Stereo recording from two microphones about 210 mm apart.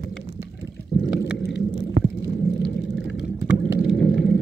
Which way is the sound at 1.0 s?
55° left (ahead or behind).